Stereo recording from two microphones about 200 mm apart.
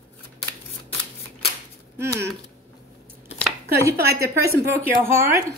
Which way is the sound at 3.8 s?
15° right (ahead or behind).